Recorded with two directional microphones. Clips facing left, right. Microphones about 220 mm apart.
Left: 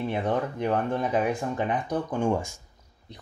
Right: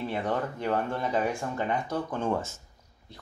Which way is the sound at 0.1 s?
15° left (ahead or behind).